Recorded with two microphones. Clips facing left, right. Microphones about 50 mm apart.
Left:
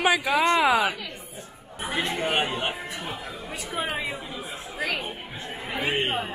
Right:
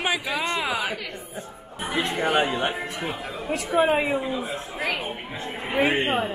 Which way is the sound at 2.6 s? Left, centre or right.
Right.